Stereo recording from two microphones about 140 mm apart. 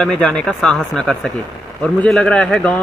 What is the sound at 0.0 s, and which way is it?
Speech, 5° left (ahead or behind).